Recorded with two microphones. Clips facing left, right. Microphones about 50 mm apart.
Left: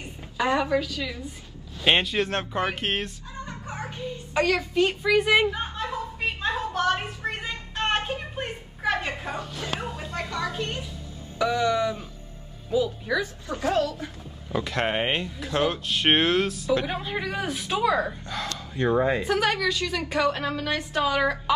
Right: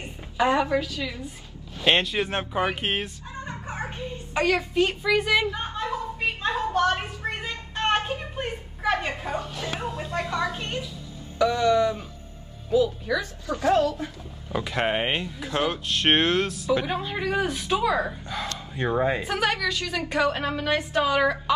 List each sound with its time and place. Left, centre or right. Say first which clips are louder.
0.2 s a woman's voice: right 2 dB; centre
1.9 s speech: even; centre
2.2 s a woman's voice: right 1 dB; centre
3.4 s a sound: right 3 dB; right
4.3 s a woman's voice: even; centre
4.7 s speech: left 1 dB; centre
5.8 s a sound: right 2 dB; centre
9.0 s a sound: right 2 dB; centre
9.8 s music: right 2 dB; centre
10.1 s speech: right 2 dB; right
11.3 s speech: right 3 dB; centre
13.6 s a woman's voice: right 3 dB; right
14.5 s a woman's voice: right 1 dB; centre